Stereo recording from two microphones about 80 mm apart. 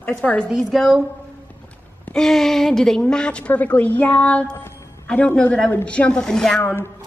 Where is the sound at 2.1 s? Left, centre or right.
Centre.